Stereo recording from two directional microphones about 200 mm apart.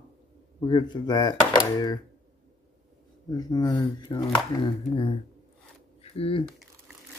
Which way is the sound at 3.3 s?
20° left (ahead or behind).